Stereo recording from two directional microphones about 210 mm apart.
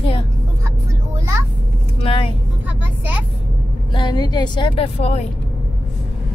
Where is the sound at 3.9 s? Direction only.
20° left (ahead or behind).